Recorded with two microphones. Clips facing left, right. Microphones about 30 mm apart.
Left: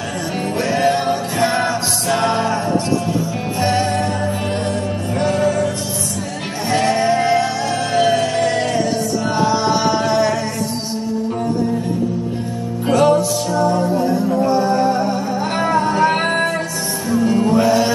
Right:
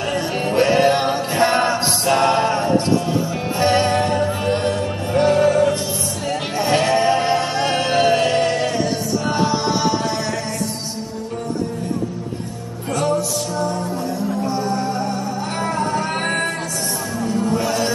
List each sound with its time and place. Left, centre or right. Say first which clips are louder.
0.6 s music: right 2 dB; right
2.1 s music: right 1 dB; right
6.9 s music: left 1 dB; centre
8.0 s music: left 1 dB; right
9.3 s music: left 2 dB; centre
9.8 s music: left 5 dB; centre
12.8 s music: left 7 dB; left
14.8 s music: left 5 dB; left
17.3 s music: left 4 dB; left